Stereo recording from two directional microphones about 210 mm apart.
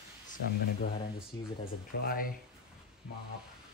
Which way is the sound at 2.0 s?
45° left (ahead or behind).